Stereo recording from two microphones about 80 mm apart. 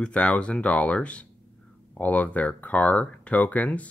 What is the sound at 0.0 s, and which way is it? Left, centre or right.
Speech, centre.